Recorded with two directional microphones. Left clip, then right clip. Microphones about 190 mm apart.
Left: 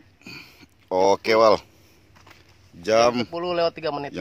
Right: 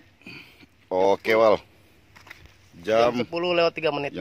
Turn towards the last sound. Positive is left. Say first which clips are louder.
# right 1 dB
turn(degrees=-55)  # may be behind; listen again after turning